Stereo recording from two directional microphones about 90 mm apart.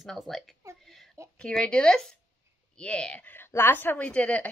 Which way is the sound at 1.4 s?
10° left (ahead or behind).